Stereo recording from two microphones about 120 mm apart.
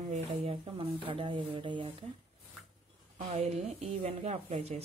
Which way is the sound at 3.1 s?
60° right (ahead or behind).